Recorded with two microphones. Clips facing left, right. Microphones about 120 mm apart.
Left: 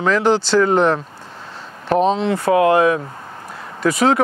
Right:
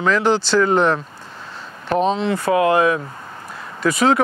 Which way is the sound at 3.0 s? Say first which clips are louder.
Left 1 dB; 30° left (ahead or behind).